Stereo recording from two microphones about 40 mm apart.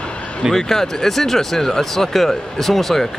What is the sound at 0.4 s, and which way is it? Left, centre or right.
Speech, centre.